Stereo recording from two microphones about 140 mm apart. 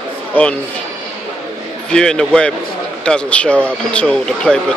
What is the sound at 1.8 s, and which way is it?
Speech, 5° left (ahead or behind).